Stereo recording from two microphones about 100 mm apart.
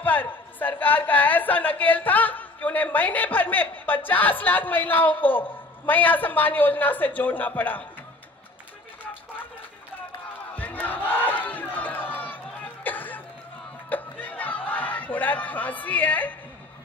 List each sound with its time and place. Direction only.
0.0 s a woman's voice: 15° left (ahead or behind)
10.5 s battle cry: 15° left (ahead or behind)
11.1 s crowd: 15° left (ahead or behind)
12.8 s cough: 15° left (ahead or behind)
13.8 s a sound: 15° left (ahead or behind)